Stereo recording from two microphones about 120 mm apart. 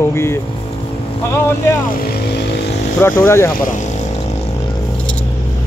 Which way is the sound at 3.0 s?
25° left (ahead or behind).